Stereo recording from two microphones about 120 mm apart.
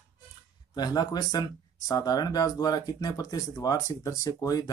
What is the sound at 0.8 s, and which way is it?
Speech, 35° left (ahead or behind).